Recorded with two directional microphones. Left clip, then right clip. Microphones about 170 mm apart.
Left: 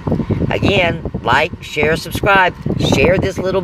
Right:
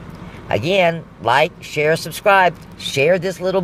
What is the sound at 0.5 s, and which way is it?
Speech, centre (ahead or behind).